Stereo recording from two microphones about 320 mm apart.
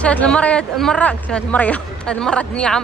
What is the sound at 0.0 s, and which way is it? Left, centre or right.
Speech, centre.